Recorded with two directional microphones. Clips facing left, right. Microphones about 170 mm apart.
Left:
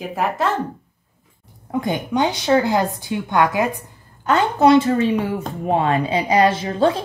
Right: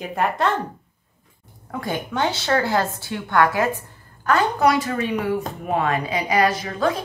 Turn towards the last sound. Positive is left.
turn(degrees=30)  # may be behind; listen again after turning